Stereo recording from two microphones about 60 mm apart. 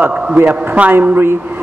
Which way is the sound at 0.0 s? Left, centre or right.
Centre.